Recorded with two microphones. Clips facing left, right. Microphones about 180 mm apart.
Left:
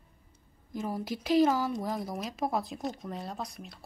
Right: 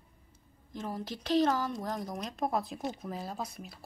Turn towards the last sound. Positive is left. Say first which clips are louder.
# even
turn(degrees=-5)  # may be behind; listen again after turning